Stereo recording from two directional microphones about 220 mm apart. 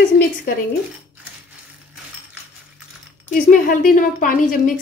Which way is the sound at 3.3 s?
40° left (ahead or behind).